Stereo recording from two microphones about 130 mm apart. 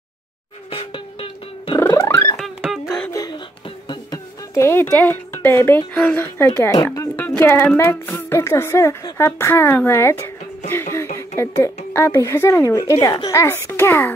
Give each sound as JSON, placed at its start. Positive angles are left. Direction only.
{"t": 0.7, "sound": "cat", "side_deg": 45}
{"t": 1.8, "sound": "music", "side_deg": 20}
{"t": 2.6, "sound": "music", "side_deg": 0}
{"t": 3.1, "sound": "a sound", "side_deg": 30}
{"t": 4.6, "sound": "speech", "side_deg": 20}
{"t": 7.2, "sound": "a child's voice", "side_deg": 15}